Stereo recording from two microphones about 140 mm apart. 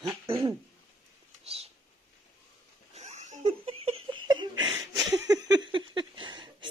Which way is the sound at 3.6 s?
40° right (ahead or behind).